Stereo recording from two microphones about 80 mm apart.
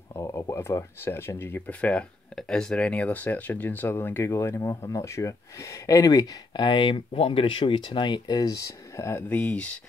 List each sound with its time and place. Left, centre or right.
0.1 s speech: left
6.6 s speech: left
7.4 s speech: left
9.3 s speech: centre